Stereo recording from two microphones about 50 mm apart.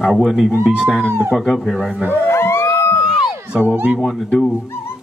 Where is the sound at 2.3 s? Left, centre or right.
Left.